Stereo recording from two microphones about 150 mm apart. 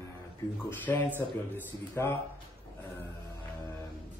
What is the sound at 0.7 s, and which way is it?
A man's voice, 15° left (ahead or behind).